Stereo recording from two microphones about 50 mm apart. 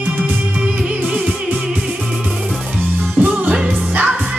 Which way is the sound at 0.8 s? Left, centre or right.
Right.